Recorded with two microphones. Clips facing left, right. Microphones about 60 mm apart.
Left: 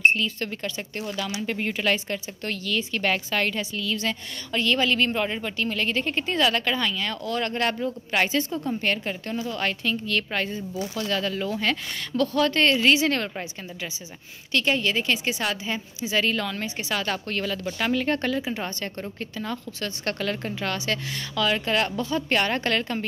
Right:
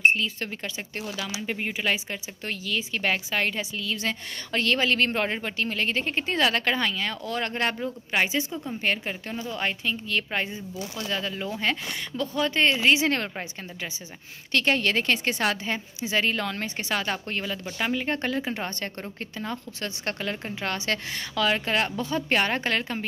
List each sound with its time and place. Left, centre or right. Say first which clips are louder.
0.0 s speech: left 1 dB; right
1.1 s speech: left 3 dB; centre; by 13.5 s right
14.5 s speech: even; right; by 18.3 s centre
18.3 s speech: left 1 dB; right
20.6 s speech: even; right